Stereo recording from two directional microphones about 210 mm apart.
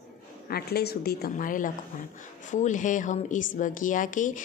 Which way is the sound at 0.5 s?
50° left (ahead or behind).